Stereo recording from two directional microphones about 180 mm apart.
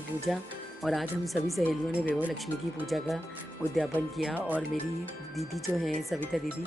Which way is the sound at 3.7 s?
Centre (ahead or behind).